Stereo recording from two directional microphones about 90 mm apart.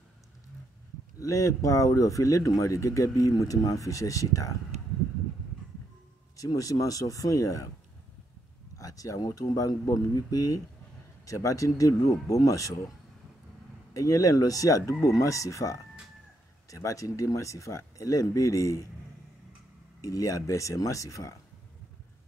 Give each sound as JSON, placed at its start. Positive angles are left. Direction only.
{"t": 1.2, "sound": "speech", "side_deg": 35}
{"t": 6.3, "sound": "speech", "side_deg": 40}
{"t": 8.7, "sound": "speech", "side_deg": 40}
{"t": 13.9, "sound": "speech", "side_deg": 35}
{"t": 20.0, "sound": "speech", "side_deg": 40}